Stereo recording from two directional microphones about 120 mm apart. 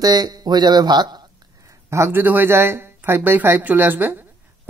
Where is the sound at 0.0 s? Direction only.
35° right (ahead or behind).